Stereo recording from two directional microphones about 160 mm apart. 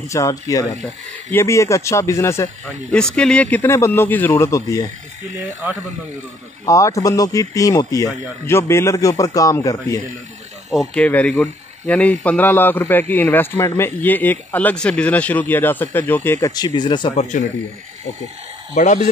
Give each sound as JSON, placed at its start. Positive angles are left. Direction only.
{"t": 0.1, "sound": "speech", "side_deg": 20}
{"t": 2.9, "sound": "speech", "side_deg": 5}
{"t": 6.6, "sound": "speech", "side_deg": 20}
{"t": 10.7, "sound": "speech", "side_deg": 0}
{"t": 11.1, "sound": "speech", "side_deg": 10}
{"t": 17.1, "sound": "a man's voice", "side_deg": 50}
{"t": 18.8, "sound": "a man's voice", "side_deg": 50}